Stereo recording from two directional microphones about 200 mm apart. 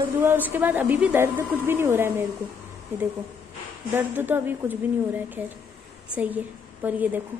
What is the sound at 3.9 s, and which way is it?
A woman's voice, 10° right (ahead or behind).